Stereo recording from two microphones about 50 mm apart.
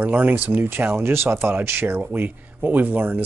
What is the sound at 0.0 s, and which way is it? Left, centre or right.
Speech, right.